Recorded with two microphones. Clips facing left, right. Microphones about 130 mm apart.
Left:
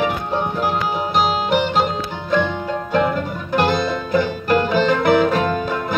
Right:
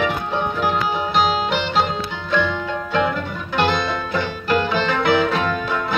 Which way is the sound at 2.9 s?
45° left (ahead or behind).